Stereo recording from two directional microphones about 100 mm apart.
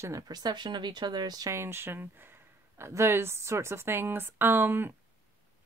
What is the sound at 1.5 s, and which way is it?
Speech, 25° right (ahead or behind).